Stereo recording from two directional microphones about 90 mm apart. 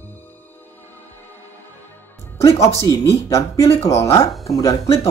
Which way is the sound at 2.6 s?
35° left (ahead or behind).